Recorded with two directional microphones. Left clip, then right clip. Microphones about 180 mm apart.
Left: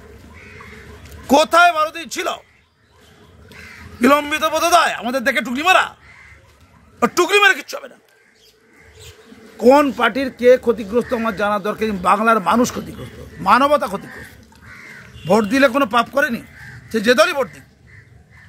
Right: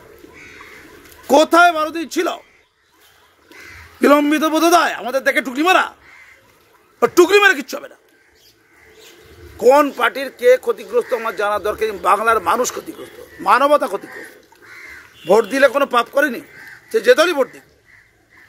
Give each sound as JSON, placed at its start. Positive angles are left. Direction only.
{"t": 1.2, "sound": "a man's voice", "side_deg": 20}
{"t": 4.0, "sound": "a man's voice", "side_deg": 20}
{"t": 7.0, "sound": "a man's voice", "side_deg": 15}
{"t": 9.6, "sound": "a man's voice", "side_deg": 0}
{"t": 15.2, "sound": "a man's voice", "side_deg": 15}